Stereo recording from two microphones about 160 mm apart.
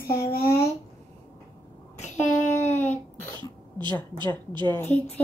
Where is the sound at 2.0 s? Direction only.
45° left (ahead or behind).